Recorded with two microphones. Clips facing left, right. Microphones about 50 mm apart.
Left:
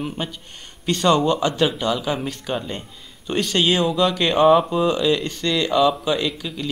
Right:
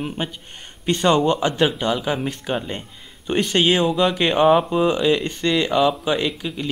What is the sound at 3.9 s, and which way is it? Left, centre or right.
Speech, centre.